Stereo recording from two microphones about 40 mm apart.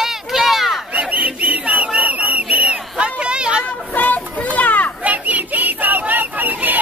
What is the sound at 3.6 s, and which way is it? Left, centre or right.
Children playing, left.